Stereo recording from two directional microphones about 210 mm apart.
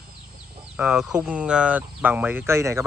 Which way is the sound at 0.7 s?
Centre (ahead or behind).